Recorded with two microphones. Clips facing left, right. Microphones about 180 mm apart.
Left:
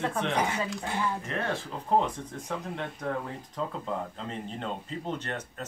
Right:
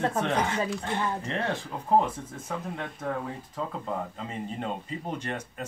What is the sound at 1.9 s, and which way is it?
Speech, 5° right (ahead or behind).